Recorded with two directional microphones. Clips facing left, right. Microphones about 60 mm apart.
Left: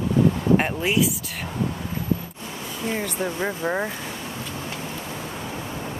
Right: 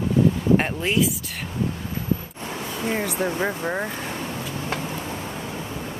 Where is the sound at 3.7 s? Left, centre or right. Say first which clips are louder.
Left 1 dB; centre.